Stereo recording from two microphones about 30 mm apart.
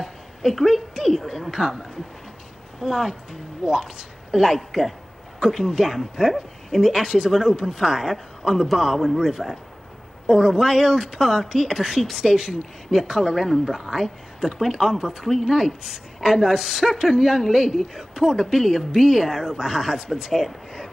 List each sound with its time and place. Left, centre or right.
0.0 s a sound: centre
0.9 s speech: centre
2.8 s speech: right
13.3 s speech: centre